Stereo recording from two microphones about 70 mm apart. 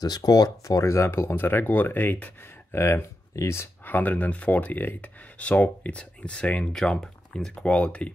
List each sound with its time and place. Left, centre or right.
0.0 s speech: left
2.7 s speech: left
3.8 s speech: left
6.7 s speech: centre